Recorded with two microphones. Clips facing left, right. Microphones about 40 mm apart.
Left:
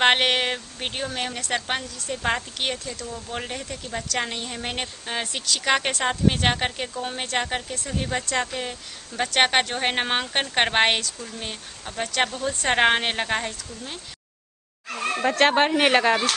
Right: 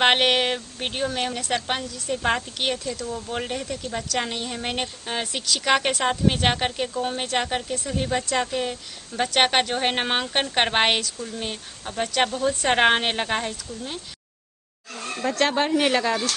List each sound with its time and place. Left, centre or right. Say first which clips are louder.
0.0 s a woman's voice: right 1 dB; centre
14.9 s speech: left 6 dB; left
15.2 s speech: left 3 dB; left